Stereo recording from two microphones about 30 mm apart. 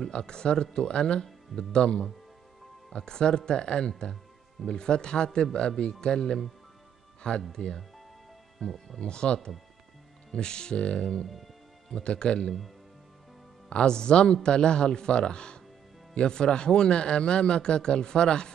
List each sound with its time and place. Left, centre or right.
0.1 s a man's voice: left
7.5 s a man's voice: left
8.5 s speech: centre
9.0 s a man's voice: left
13.7 s a man's voice: left